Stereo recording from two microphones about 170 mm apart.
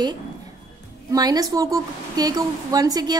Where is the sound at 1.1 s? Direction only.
20° right (ahead or behind).